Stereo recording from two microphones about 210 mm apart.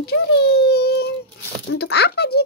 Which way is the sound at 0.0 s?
50° left (ahead or behind).